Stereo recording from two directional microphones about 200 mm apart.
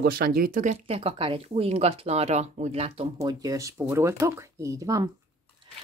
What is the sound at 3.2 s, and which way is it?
Speech, 20° right (ahead or behind).